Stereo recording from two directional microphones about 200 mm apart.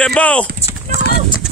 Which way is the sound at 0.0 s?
5° left (ahead or behind).